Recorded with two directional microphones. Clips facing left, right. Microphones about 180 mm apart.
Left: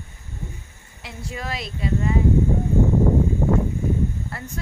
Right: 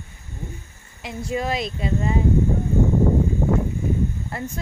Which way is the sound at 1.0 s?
20° right (ahead or behind).